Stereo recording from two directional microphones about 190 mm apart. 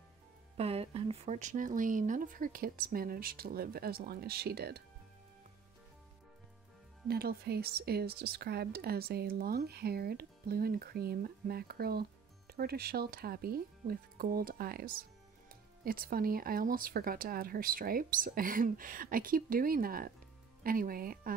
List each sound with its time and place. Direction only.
0.6 s speech: 30° right (ahead or behind); by 4.8 s 55° right (ahead or behind)
7.1 s speech: 55° right (ahead or behind)